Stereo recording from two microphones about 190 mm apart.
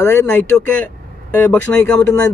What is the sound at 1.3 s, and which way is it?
Speech, 10° left (ahead or behind).